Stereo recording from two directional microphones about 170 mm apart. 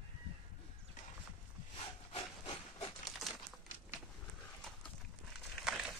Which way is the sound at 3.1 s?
Centre (ahead or behind).